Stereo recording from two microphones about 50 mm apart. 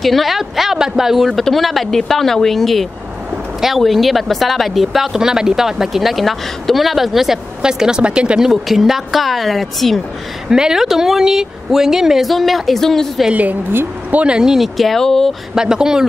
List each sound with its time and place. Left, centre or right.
0.0 s speech: centre
7.6 s speech: centre
8.5 s speech: centre
10.5 s speech: centre
13.3 s a woman's voice: right
14.1 s speech: centre
14.8 s speech: centre
15.5 s speech: centre